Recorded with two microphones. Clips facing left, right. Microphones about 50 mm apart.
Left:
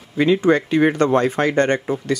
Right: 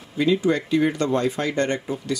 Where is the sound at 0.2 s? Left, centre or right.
Left.